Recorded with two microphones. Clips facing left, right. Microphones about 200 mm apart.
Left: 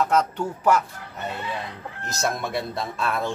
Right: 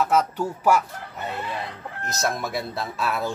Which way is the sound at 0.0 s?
5° right (ahead or behind).